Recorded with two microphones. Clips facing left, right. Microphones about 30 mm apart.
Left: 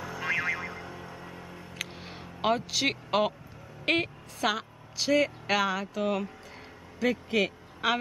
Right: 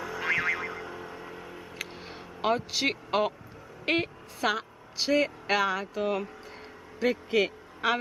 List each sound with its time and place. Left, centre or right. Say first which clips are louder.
0.0 s music: right 2 dB; centre
1.9 s a sound: right 1 dB; centre
2.9 s a woman's voice: even; centre
4.9 s a man's voice: even; centre